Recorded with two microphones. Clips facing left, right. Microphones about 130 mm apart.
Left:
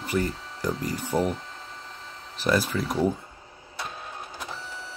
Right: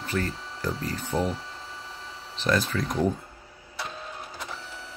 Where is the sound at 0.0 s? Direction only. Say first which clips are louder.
Left 3 dB; 10° left (ahead or behind).